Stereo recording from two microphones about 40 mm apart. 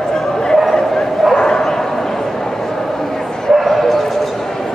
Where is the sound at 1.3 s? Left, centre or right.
Centre.